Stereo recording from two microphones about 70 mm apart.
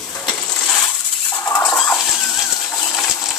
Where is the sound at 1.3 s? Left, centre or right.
Left.